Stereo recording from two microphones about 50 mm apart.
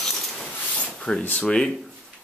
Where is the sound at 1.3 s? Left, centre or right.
Centre.